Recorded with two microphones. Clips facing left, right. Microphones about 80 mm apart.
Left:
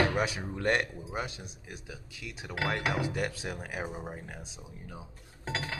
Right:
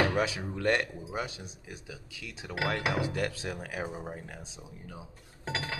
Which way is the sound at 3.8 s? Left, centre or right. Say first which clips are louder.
Right 1 dB; centre.